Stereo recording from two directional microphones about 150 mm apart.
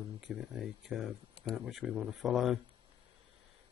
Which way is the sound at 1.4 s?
40° left (ahead or behind).